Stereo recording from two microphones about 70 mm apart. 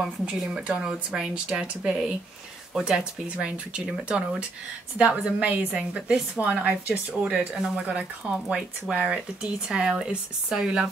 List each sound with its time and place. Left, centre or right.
0.0 s a woman's voice: centre
3.3 s a woman's voice: centre